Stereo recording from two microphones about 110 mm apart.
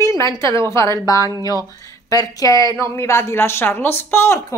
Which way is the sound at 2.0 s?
30° left (ahead or behind).